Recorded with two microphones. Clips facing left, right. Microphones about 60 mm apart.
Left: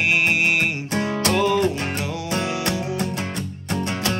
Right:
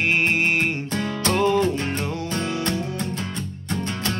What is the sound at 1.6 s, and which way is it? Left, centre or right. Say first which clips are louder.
Music: left 1 dB; left.